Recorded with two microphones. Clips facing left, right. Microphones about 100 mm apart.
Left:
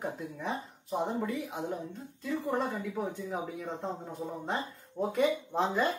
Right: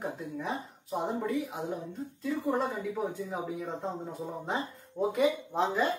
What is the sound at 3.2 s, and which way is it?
Speech, 5° right (ahead or behind).